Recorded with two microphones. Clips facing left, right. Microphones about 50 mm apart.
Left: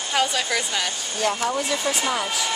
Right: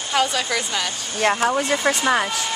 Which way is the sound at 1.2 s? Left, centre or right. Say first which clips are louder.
Right 4 dB; right.